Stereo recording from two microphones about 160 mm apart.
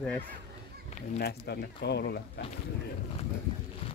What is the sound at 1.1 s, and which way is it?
Speech, 90° left.